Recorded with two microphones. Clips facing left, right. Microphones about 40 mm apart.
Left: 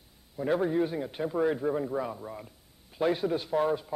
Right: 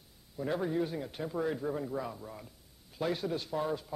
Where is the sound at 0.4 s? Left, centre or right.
Centre.